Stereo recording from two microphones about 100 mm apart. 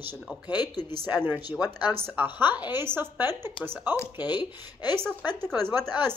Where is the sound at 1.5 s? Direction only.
40° left (ahead or behind).